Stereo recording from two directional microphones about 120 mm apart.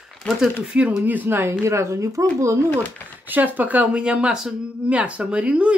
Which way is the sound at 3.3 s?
15° right (ahead or behind).